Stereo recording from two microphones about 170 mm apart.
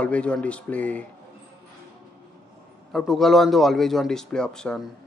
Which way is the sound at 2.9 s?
Centre (ahead or behind).